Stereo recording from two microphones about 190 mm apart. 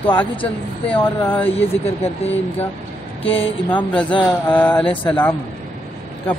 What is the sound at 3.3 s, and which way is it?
Speech, 30° left (ahead or behind).